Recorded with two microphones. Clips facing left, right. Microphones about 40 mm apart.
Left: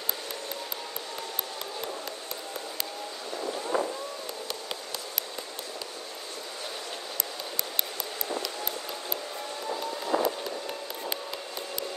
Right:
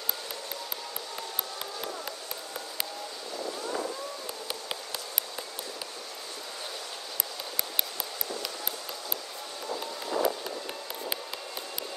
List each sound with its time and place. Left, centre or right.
3.7 s fireworks: left
10.1 s vehicle: left